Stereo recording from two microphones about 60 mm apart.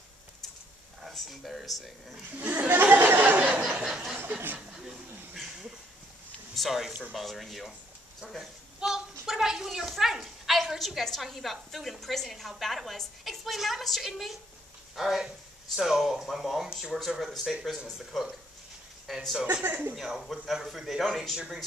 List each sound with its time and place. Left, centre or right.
1.0 s speech: centre
2.3 s a sound: right
3.8 s speech: centre
4.6 s a sound: centre
6.5 s speech: centre
8.7 s speech: centre
17.9 s speech: centre
19.6 s speech: right
20.0 s speech: centre